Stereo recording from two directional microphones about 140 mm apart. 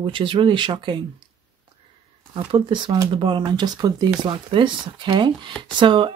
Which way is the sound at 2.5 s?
35° right (ahead or behind).